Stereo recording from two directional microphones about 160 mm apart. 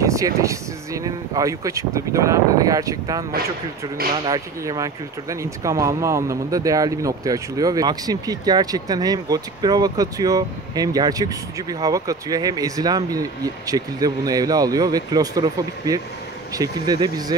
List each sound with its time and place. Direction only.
0.0 s speech: 20° right (ahead or behind)
4.3 s speech: 20° right (ahead or behind)